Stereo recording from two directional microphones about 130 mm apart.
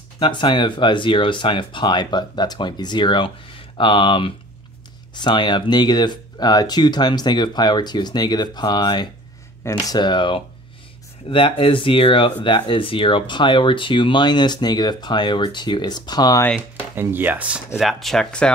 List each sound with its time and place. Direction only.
0.2 s speech: 35° left (ahead or behind)
16.9 s speech: 15° right (ahead or behind)
17.7 s speech: centre (ahead or behind)